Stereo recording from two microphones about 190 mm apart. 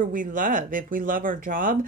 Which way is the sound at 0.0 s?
45° right (ahead or behind).